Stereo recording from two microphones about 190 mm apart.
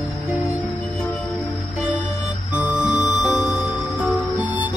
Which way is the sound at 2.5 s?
5° right (ahead or behind).